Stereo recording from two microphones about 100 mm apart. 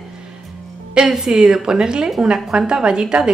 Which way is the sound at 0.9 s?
5° right (ahead or behind).